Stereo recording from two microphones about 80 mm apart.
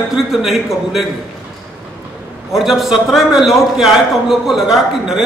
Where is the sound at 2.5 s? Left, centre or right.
Centre.